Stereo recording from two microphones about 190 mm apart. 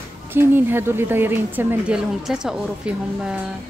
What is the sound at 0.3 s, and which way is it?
A woman's voice, 10° right (ahead or behind).